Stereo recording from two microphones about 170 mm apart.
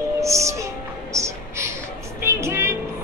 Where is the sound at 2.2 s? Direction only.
15° right (ahead or behind).